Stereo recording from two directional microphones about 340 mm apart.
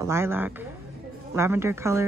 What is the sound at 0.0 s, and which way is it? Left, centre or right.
A woman's voice, centre.